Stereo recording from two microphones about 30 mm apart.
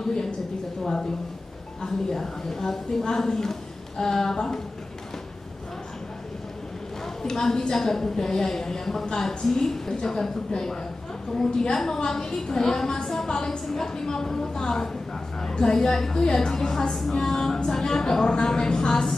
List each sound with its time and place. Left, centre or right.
1.8 s a woman's voice: centre
7.2 s a woman's voice: left
11.3 s a woman's voice: centre